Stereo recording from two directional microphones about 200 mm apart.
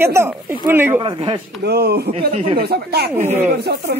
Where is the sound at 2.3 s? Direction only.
30° right (ahead or behind).